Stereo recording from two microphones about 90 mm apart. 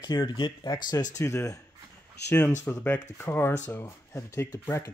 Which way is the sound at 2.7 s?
20° left (ahead or behind).